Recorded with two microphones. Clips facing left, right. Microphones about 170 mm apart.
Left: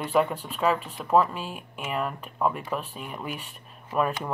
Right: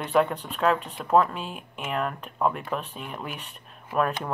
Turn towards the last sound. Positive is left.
turn(degrees=0)  # may be behind; listen again after turning